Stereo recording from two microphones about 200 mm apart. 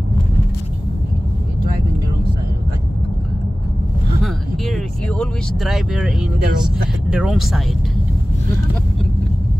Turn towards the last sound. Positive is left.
turn(degrees=0)  # may be behind; listen again after turning